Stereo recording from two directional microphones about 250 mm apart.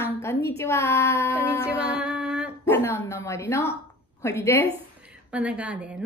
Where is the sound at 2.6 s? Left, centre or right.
Centre.